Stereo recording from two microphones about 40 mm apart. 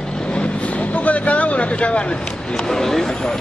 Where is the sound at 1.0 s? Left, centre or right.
Left.